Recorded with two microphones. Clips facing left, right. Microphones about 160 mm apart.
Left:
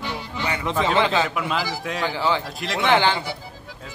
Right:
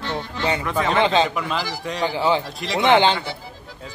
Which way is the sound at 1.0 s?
25° right (ahead or behind).